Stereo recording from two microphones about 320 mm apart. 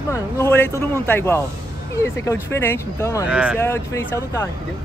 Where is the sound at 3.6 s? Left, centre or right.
Centre.